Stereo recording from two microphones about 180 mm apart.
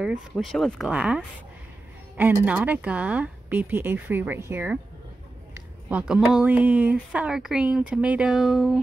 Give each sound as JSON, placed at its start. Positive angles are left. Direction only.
{"t": 0.0, "sound": "speech", "side_deg": 0}